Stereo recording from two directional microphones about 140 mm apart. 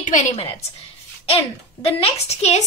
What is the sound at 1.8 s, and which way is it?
Speech, 50° left (ahead or behind).